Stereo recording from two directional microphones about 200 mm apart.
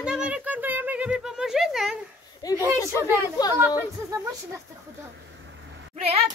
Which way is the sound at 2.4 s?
20° left (ahead or behind).